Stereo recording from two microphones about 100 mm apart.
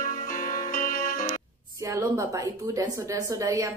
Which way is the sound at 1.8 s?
30° right (ahead or behind).